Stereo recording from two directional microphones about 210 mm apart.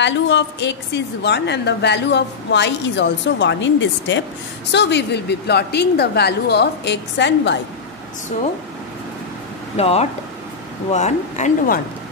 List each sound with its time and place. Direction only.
0.0 s a woman's voice: 55° left (ahead or behind)
9.8 s a man's voice: 30° left (ahead or behind)